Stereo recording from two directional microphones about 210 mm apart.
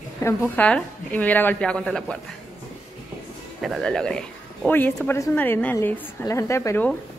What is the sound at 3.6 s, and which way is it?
A woman's voice, centre (ahead or behind).